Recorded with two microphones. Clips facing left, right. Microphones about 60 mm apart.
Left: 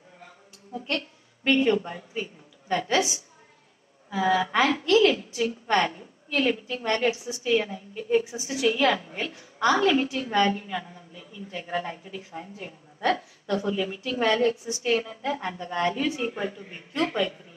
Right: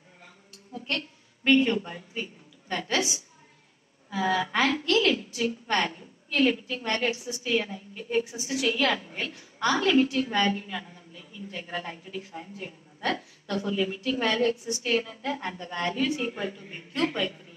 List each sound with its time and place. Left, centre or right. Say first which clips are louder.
0.8 s a sound: left 2 dB; centre
2.7 s a woman's voice: left 4 dB; centre
10.9 s a man's voice: left 3 dB; left
11.5 s a woman's voice: left 5 dB; centre